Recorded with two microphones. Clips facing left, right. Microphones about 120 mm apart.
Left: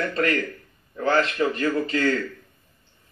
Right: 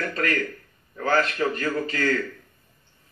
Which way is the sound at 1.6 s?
30° left (ahead or behind).